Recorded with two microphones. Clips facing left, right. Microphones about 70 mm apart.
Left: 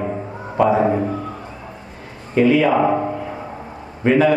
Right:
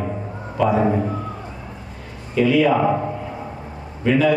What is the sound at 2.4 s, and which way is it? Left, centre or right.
Speech, left.